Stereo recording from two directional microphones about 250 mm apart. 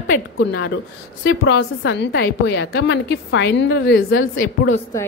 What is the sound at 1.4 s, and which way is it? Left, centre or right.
A woman's voice, left.